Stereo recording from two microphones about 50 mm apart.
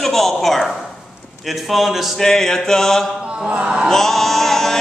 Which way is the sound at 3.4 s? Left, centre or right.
Centre.